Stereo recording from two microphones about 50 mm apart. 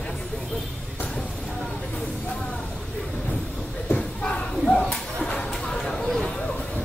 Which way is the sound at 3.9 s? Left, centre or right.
Left.